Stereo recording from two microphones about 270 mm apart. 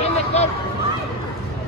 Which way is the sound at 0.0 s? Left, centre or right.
Left.